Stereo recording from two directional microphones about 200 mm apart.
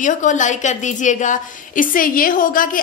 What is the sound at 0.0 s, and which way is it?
A woman's voice, 40° left (ahead or behind).